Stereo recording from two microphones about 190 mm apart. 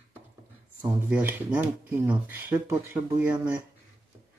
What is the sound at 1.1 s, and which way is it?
Speech, 10° right (ahead or behind).